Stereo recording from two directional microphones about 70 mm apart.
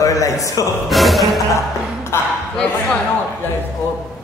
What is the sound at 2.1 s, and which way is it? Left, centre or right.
Speech, left.